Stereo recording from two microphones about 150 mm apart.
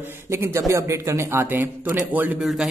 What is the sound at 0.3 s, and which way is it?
Speech, 20° right (ahead or behind).